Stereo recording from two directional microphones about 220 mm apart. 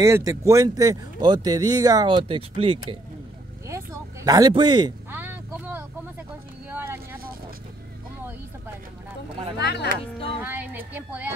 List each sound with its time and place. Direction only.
0.0 s speech: 15° right (ahead or behind)
3.6 s a sound: 15° right (ahead or behind)
6.7 s vehicle: 10° right (ahead or behind)
9.6 s speech: 50° left (ahead or behind)
10.4 s speech: 10° right (ahead or behind)